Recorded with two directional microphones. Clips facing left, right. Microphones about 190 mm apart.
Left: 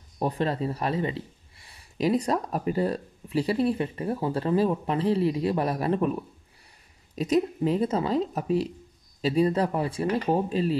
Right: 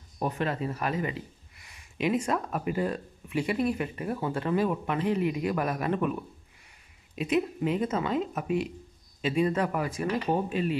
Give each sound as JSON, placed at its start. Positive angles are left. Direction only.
{"t": 0.2, "sound": "speech", "side_deg": 35}
{"t": 7.2, "sound": "speech", "side_deg": 35}